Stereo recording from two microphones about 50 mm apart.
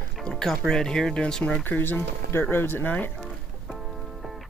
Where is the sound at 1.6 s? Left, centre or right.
Left.